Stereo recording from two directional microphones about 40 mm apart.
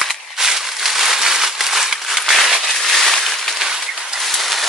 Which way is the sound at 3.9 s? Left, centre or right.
Centre.